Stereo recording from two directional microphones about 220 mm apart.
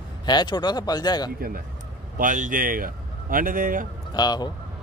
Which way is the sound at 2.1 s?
35° right (ahead or behind).